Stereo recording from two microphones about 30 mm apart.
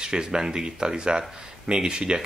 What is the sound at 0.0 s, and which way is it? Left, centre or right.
Speech, right.